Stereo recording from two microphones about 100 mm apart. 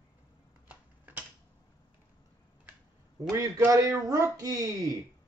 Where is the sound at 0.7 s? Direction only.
15° right (ahead or behind).